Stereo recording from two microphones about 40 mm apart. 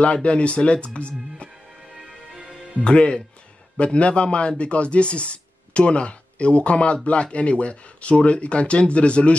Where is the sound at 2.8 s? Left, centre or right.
Left.